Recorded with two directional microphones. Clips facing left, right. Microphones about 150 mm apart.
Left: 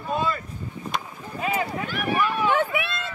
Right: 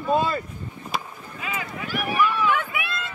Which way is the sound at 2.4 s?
30° left (ahead or behind).